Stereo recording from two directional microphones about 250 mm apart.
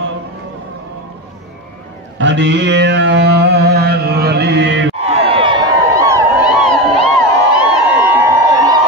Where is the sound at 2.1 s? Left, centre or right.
Right.